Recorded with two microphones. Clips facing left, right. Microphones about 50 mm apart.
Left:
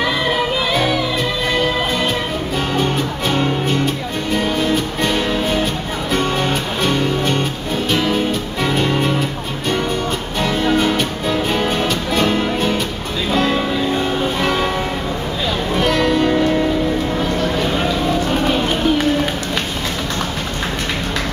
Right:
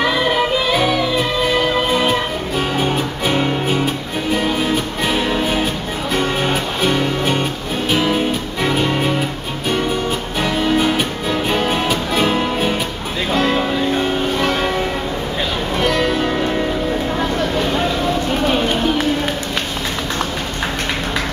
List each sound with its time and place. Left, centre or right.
0.0 s music: centre
10.4 s music: centre
15.7 s music: centre